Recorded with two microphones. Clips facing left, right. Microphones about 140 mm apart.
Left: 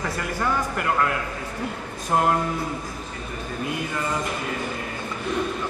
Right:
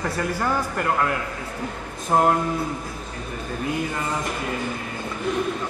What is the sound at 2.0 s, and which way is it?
Music, 25° right (ahead or behind).